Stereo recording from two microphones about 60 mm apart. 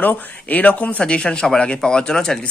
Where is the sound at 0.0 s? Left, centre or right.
Left.